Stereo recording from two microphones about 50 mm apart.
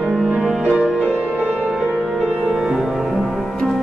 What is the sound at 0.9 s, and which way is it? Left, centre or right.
Music, left.